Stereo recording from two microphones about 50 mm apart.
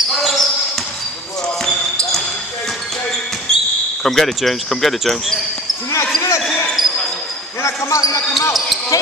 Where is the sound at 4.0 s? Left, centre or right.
Centre.